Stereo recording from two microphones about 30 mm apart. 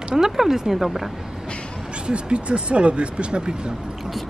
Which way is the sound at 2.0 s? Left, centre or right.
Right.